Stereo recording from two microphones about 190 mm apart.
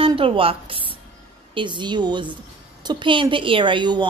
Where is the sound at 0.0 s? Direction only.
30° right (ahead or behind).